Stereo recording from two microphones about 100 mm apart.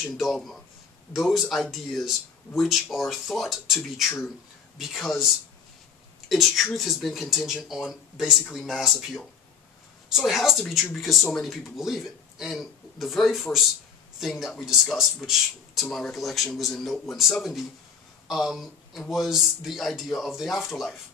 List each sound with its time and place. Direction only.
0.0 s speech: centre (ahead or behind)